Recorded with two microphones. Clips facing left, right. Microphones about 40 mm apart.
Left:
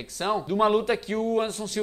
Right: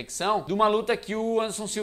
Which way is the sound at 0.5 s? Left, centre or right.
Centre.